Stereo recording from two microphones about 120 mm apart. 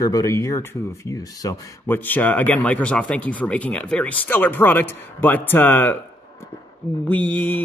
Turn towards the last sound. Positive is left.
turn(degrees=15)  # may be behind; listen again after turning